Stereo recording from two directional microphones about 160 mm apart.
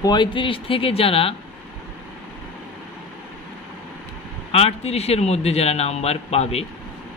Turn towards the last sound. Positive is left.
turn(degrees=40)  # may be behind; listen again after turning